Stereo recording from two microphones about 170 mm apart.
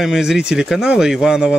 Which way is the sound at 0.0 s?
5° right (ahead or behind).